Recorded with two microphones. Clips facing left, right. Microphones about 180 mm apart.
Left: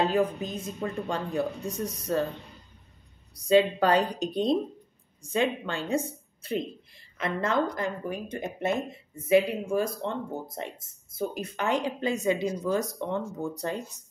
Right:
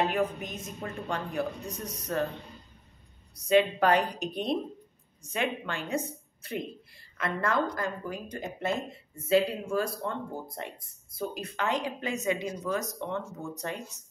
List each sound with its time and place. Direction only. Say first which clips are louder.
0.0 s speech: left 3 dB; 30° left (ahead or behind)
3.3 s speech: left 2 dB; 30° left (ahead or behind)